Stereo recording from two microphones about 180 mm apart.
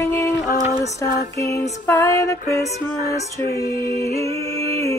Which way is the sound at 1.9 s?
20° left (ahead or behind).